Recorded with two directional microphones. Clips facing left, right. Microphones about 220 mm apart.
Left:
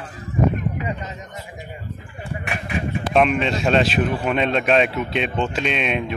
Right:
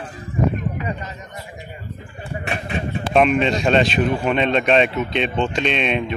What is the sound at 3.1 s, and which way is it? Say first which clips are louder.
Speech: right 2 dB; centre (ahead or behind).